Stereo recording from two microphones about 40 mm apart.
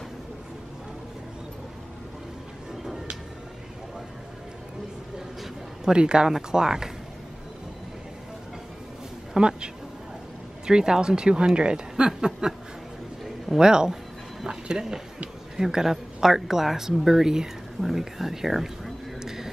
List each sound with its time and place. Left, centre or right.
2.7 s a sound: centre
5.9 s speech: right
9.3 s speech: centre
10.7 s speech: centre
13.6 s speech: centre
19.2 s a sound: centre